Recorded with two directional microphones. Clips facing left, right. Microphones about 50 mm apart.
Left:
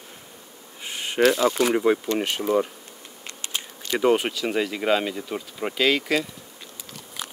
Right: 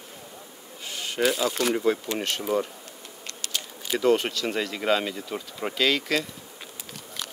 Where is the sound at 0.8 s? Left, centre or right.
Left.